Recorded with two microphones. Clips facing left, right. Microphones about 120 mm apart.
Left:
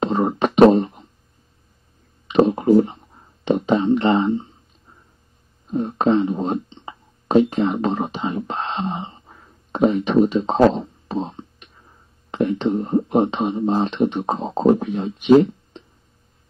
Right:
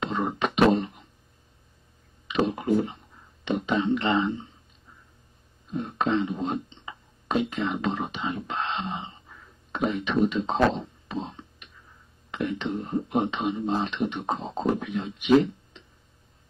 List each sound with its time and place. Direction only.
0.0 s beatboxing: 35° left (ahead or behind)
2.2 s a sound: 40° left (ahead or behind)
5.7 s speech: 35° left (ahead or behind)